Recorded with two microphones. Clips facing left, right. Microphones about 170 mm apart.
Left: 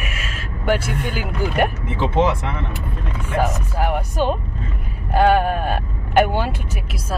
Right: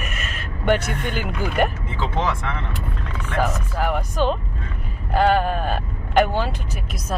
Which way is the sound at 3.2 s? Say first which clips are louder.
Left 2 dB; 10° left (ahead or behind).